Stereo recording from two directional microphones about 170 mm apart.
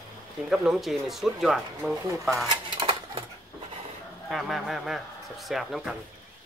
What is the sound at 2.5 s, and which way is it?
Dishes, 30° right (ahead or behind).